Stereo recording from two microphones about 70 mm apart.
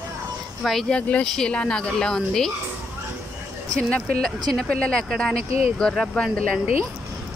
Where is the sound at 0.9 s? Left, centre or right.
Centre.